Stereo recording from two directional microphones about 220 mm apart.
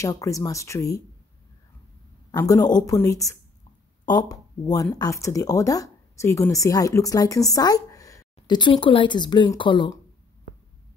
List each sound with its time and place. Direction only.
0.0 s speech: 15° left (ahead or behind)
2.3 s speech: 15° left (ahead or behind)